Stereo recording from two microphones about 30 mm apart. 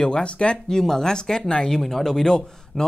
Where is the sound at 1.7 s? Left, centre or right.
Centre.